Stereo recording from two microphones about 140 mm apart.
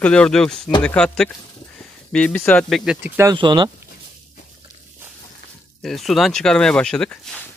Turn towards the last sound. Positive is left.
turn(degrees=10)  # may be behind; listen again after turning